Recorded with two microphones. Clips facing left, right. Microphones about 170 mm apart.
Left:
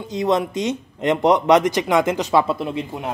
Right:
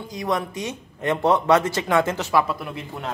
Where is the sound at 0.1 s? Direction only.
20° left (ahead or behind).